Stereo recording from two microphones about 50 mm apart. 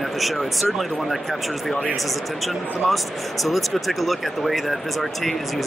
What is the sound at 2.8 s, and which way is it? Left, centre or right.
Speech, centre.